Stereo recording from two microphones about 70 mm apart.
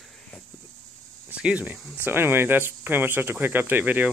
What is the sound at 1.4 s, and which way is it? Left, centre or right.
Speech, centre.